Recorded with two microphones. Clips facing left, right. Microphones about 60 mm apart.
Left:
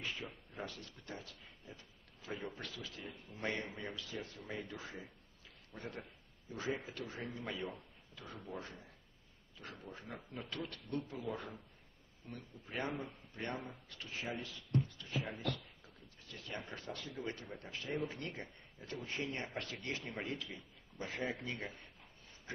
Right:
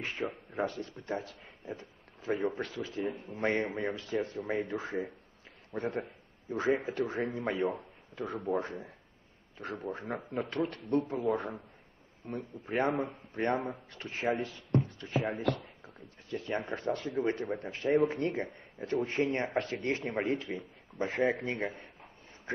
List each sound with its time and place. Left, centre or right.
0.0 s speech: right
2.8 s speech: right
4.7 s speech: right
5.7 s a man's voice: right
8.2 s speech: right
8.5 s speech: right
13.7 s speech: right
14.0 s speech: right
18.9 s speech: right